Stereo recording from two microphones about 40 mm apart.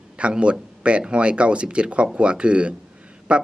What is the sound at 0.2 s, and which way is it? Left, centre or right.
Speech, right.